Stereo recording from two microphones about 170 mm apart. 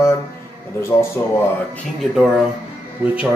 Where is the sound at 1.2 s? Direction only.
20° left (ahead or behind).